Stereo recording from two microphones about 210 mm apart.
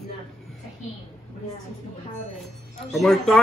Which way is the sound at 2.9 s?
Centre (ahead or behind).